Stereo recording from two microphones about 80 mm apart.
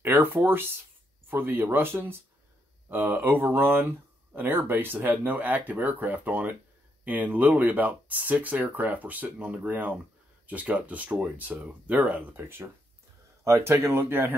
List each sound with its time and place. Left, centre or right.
0.0 s speech: right